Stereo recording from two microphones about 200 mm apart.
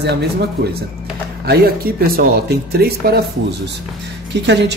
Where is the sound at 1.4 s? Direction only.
50° right (ahead or behind).